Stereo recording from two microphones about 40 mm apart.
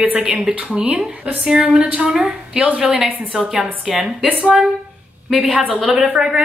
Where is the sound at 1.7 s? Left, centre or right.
Right.